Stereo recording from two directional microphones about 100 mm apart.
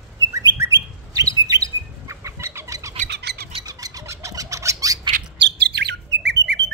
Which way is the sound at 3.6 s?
35° right (ahead or behind).